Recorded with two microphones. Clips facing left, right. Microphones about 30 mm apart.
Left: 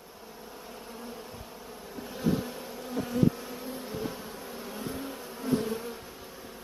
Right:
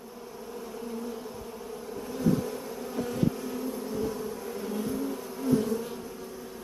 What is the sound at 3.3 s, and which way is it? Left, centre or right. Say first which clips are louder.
Bee: right 5 dB; centre.